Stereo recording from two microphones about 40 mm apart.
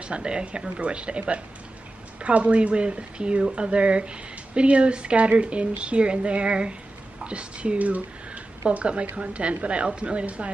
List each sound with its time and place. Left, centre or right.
0.0 s speech: right